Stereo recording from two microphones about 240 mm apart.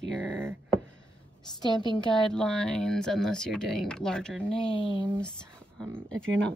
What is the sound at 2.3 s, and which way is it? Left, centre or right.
Speech, centre.